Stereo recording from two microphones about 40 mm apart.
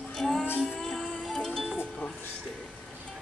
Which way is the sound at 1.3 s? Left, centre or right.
Centre.